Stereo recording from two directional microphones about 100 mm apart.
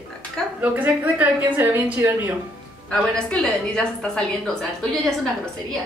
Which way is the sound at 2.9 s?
10° left (ahead or behind).